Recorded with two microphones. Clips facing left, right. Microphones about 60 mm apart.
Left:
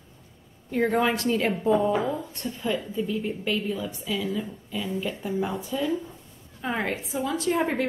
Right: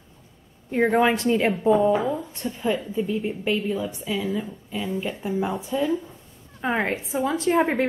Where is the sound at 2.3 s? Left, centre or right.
Right.